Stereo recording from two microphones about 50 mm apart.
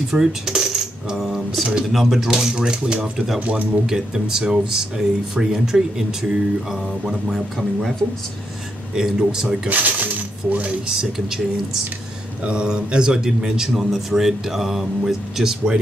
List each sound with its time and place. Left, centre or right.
0.1 s coin: centre
1.2 s speech: centre
3.3 s speech: right
3.8 s speech: centre
8.9 s speech: centre
9.7 s a sound: right
10.9 s speech: centre
12.4 s speech: centre